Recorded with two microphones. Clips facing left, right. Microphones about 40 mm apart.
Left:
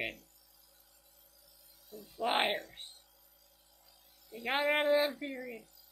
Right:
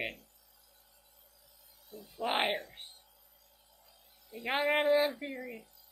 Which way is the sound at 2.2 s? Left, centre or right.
Centre.